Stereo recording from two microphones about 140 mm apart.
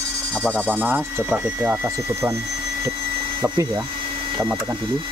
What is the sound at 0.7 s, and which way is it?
Speech, 15° right (ahead or behind).